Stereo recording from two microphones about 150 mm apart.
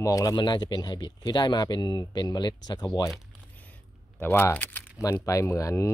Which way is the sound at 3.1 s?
10° left (ahead or behind).